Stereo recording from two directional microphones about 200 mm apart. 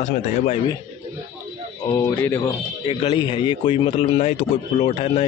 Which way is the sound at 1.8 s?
15° left (ahead or behind).